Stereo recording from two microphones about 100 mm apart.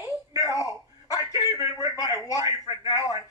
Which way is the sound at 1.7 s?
35° left (ahead or behind).